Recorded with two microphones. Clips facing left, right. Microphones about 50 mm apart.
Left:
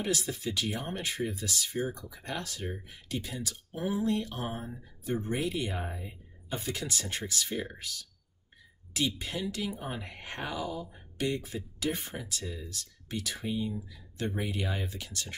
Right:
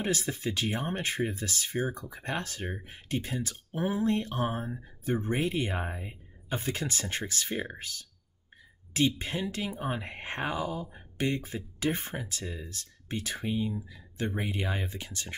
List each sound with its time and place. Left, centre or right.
0.0 s speech: right